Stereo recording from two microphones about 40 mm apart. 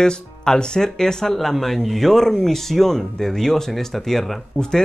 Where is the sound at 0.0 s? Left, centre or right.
Centre.